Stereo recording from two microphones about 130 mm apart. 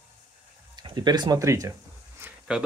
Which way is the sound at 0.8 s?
30° right (ahead or behind).